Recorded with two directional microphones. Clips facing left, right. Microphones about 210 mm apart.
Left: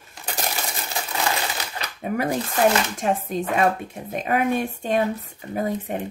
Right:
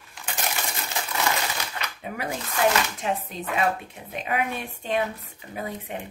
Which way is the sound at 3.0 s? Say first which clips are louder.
Left 5 dB; 45° left (ahead or behind).